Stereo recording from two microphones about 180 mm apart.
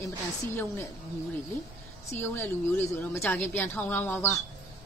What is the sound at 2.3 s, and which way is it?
Speech, 10° left (ahead or behind).